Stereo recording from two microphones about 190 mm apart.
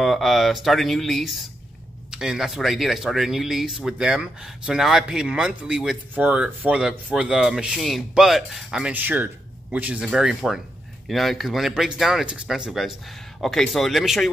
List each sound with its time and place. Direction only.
0.0 s speech: centre (ahead or behind)